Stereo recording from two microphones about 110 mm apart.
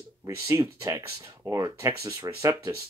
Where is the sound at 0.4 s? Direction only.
30° right (ahead or behind).